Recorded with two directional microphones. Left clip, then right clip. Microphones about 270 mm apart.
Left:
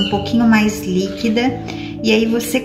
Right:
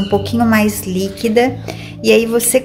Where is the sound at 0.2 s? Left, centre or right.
Right.